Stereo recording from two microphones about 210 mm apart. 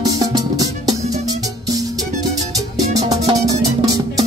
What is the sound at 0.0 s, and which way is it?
Music, 20° right (ahead or behind).